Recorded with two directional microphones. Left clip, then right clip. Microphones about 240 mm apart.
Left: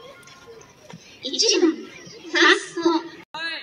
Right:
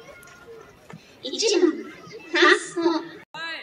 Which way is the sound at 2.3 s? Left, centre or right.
Left.